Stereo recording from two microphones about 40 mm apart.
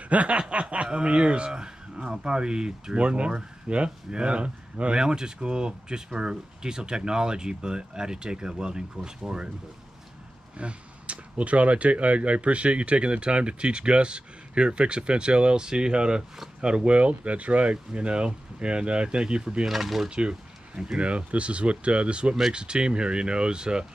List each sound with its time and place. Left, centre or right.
0.1 s speech: right
5.0 s speech: centre
10.6 s speech: right
19.6 s speech: centre
20.1 s speech: right